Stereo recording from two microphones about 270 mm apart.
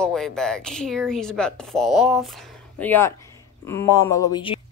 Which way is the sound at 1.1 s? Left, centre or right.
Centre.